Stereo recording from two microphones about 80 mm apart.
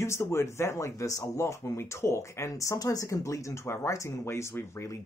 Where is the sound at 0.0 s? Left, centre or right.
Left.